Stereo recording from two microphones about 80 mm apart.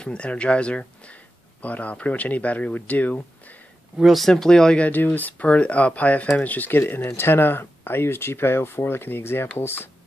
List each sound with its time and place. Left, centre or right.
0.0 s speech: centre
4.0 s speech: centre; by 9.8 s left